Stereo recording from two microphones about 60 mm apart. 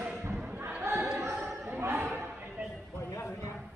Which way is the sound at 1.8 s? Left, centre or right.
Right.